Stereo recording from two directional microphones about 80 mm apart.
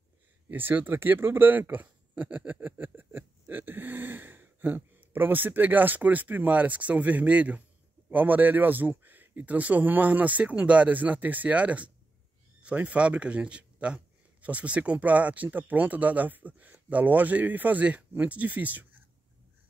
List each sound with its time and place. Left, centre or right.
0.5 s a man's voice: right